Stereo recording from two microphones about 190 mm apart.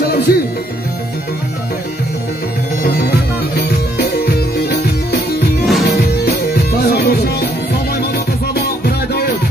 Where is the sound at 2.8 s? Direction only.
55° left (ahead or behind).